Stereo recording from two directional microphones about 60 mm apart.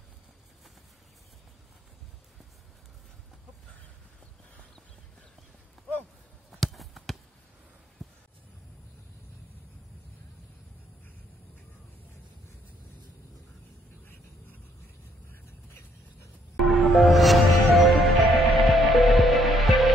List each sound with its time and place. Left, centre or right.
6.6 s basketball bounce: centre
8.0 s a sound: centre
14.0 s vehicle: left
16.5 s music: centre